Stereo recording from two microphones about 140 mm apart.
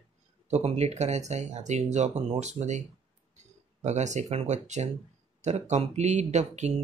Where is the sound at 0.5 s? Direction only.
50° right (ahead or behind).